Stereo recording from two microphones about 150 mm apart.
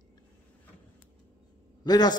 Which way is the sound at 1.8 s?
25° left (ahead or behind).